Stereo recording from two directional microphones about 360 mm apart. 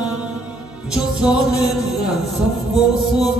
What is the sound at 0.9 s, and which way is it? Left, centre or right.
Music, centre.